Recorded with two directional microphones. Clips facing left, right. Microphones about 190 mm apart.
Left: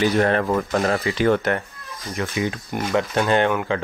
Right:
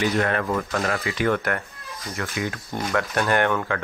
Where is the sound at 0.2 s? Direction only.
30° left (ahead or behind).